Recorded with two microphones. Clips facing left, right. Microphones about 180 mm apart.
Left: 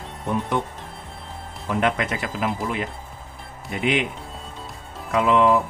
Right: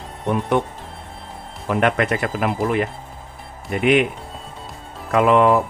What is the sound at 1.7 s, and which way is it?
Speech, 60° right (ahead or behind).